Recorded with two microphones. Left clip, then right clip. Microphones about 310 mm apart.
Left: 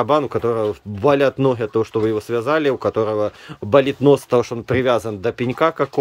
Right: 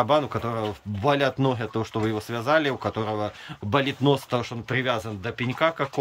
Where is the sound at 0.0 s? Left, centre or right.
Centre.